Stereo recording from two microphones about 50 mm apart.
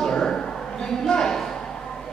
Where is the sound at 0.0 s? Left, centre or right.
Centre.